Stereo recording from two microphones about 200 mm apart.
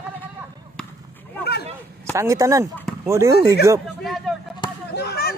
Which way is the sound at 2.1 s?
15° right (ahead or behind).